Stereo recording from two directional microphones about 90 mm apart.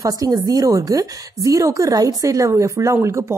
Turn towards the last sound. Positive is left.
turn(degrees=-30)  # may be behind; listen again after turning